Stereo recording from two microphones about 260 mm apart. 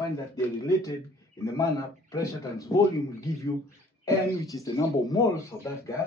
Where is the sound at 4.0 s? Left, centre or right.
Centre.